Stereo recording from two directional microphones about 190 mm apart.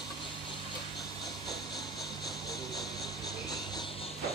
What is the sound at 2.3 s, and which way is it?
Music, centre (ahead or behind).